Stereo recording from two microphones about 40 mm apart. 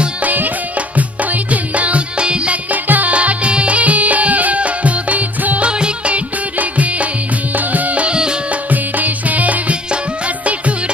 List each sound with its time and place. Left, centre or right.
0.2 s music: right
2.7 s music: right
3.2 s music: right
5.7 s music: right
8.6 s music: right